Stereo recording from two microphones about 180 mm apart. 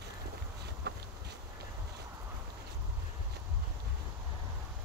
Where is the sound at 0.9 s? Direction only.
60° right (ahead or behind).